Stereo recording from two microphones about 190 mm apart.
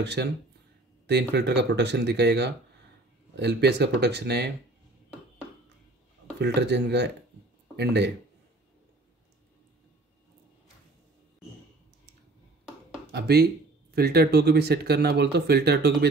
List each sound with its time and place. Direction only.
0.0 s speech: 60° right (ahead or behind)
6.4 s speech: 60° right (ahead or behind)
13.1 s speech: 55° right (ahead or behind)